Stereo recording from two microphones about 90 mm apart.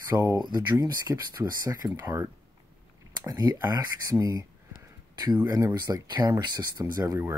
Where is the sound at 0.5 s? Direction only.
50° right (ahead or behind).